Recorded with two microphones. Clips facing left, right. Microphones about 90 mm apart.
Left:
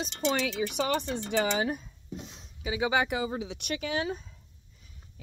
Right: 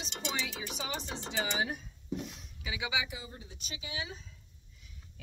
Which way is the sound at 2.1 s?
30° left (ahead or behind).